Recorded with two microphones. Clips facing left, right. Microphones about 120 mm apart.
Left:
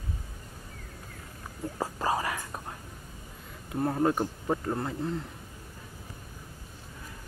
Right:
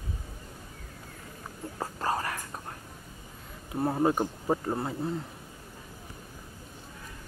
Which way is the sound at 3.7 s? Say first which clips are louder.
Even; 5° right (ahead or behind).